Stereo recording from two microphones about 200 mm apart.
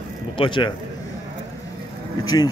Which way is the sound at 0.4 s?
25° left (ahead or behind).